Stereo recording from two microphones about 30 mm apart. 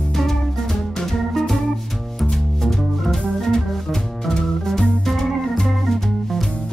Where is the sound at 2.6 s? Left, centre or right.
Centre.